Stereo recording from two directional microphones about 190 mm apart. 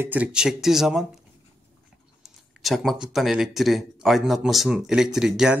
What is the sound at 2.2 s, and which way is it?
Speech, centre (ahead or behind).